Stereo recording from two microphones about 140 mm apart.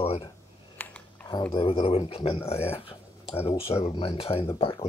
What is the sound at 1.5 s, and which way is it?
Speech, 40° left (ahead or behind).